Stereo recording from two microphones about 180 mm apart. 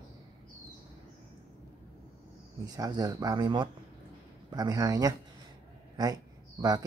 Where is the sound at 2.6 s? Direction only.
20° right (ahead or behind).